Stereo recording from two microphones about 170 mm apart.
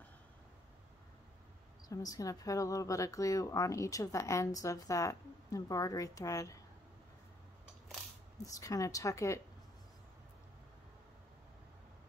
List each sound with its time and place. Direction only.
1.9 s a woman's voice: 20° left (ahead or behind)
8.5 s a woman's voice: 20° left (ahead or behind)